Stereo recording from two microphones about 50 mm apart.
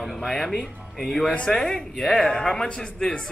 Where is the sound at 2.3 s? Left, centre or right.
Centre.